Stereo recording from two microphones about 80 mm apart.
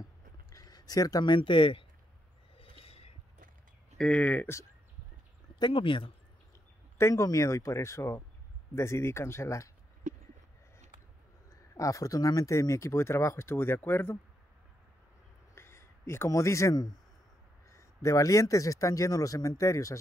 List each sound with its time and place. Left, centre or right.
0.0 s a sound: left
1.3 s speech: left
4.0 s speech: centre
5.6 s speech: left
7.0 s speech: left
11.7 s speech: left
15.5 s a sound: left
17.6 s speech: left